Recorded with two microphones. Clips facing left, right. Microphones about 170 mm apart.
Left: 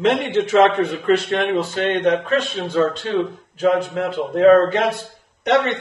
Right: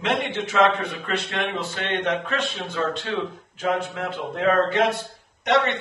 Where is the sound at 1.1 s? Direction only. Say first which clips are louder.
Left 9 dB; 30° left (ahead or behind).